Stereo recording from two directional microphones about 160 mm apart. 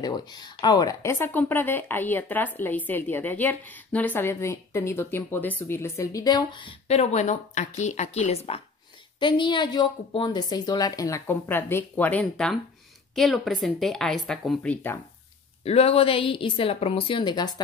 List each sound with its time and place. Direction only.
0.0 s speech: 25° left (ahead or behind)
9.2 s a woman's voice: 30° left (ahead or behind); by 15.0 s 10° left (ahead or behind)
15.6 s a woman's voice: 40° left (ahead or behind)